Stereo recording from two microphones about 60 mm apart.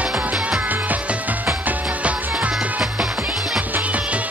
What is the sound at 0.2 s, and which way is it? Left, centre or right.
Music, right.